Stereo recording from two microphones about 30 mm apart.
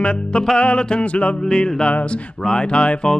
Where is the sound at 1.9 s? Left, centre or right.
Left.